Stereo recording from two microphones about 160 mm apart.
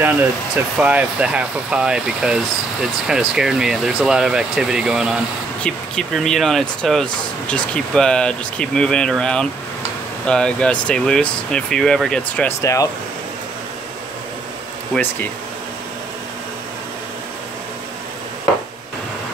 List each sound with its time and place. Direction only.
0.0 s speech: 10° right (ahead or behind); by 12.5 s 10° left (ahead or behind)
12.6 s speech: 20° left (ahead or behind)
14.9 s speech: centre (ahead or behind)